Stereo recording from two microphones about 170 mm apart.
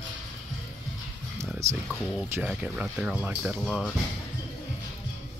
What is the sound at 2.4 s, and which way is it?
Speech, 5° right (ahead or behind).